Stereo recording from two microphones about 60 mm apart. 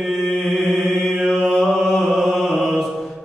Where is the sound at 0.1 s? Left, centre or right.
Centre.